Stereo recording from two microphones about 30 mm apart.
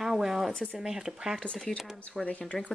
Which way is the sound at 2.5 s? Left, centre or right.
Left.